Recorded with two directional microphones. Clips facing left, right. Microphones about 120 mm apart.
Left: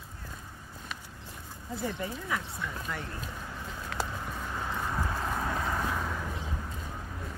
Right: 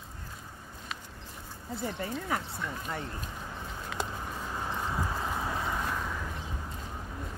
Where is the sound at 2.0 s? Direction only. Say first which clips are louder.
Right 1 dB; 40° right (ahead or behind).